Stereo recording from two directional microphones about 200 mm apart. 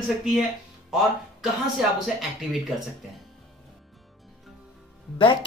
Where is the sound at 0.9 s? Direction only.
Centre (ahead or behind).